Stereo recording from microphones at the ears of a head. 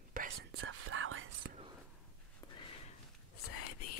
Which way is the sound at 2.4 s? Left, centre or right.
Left.